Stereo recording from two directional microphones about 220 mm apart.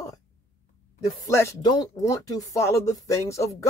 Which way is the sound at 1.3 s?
15° left (ahead or behind).